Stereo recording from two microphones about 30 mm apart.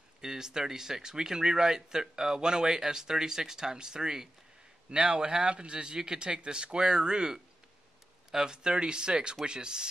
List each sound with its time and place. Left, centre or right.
0.2 s speech: centre